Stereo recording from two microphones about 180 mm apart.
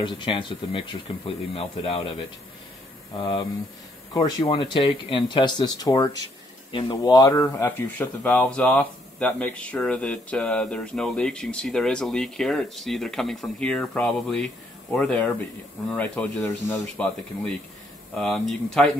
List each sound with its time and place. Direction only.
0.0 s speech: 25° left (ahead or behind)
3.2 s speech: 20° left (ahead or behind); by 17.1 s 5° left (ahead or behind)
18.1 s speech: centre (ahead or behind)